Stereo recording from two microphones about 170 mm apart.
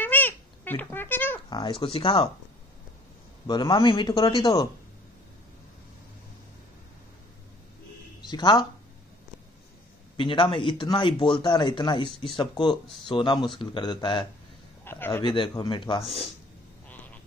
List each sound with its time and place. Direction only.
0.0 s a sound: 10° left (ahead or behind)
1.5 s speech: 30° left (ahead or behind)
3.4 s a man's voice: 25° left (ahead or behind)
8.2 s speech: 25° left (ahead or behind)
10.1 s a man's voice: 30° left (ahead or behind)
14.9 s a man's voice: 15° left (ahead or behind)
15.2 s a man's voice: 30° left (ahead or behind)
16.9 s a sound: 10° left (ahead or behind)